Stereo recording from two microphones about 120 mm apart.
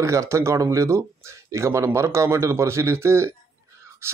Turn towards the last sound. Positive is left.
turn(degrees=-25)  # may be behind; listen again after turning